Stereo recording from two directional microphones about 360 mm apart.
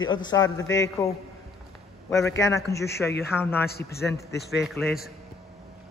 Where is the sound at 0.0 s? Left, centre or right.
Centre.